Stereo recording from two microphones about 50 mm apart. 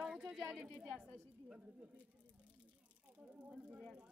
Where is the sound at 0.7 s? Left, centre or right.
Right.